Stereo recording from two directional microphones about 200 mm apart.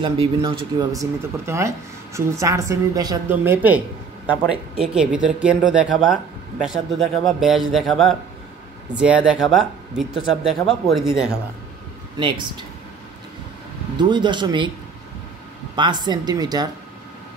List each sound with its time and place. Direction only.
0.0 s a woman's voice: 25° right (ahead or behind); by 11.3 s centre (ahead or behind)
13.9 s speech: 20° right (ahead or behind)
15.7 s speech: 20° right (ahead or behind)